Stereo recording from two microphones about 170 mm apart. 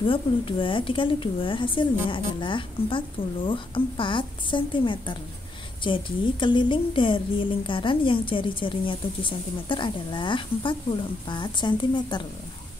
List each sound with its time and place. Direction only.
0.0 s a woman's voice: 30° left (ahead or behind)